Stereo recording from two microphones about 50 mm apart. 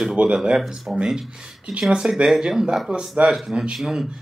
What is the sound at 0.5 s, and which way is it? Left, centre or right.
Speech, centre.